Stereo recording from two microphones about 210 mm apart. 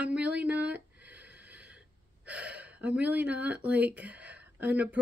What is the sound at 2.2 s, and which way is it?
A woman's voice, 5° right (ahead or behind).